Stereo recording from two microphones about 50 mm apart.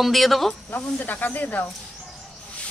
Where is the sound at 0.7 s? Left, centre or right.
Left.